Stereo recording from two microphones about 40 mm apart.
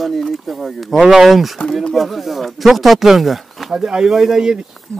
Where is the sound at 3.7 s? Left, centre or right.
Right.